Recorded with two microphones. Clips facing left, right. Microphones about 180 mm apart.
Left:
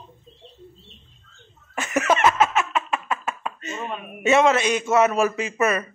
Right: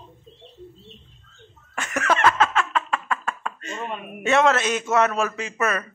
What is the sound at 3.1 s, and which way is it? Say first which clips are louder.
Knock: even; 20° left (ahead or behind).